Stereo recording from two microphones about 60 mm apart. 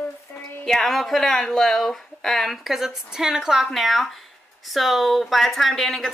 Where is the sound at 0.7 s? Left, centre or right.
Centre.